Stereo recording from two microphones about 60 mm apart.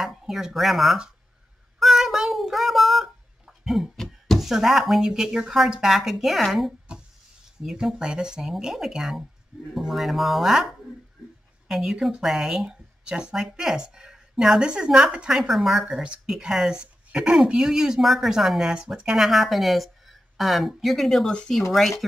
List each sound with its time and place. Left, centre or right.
0.0 s speech: centre
1.8 s child singing: centre
4.4 s speech: centre
7.6 s speech: centre
15.8 s speech: centre
21.3 s speech: centre
21.7 s speech: centre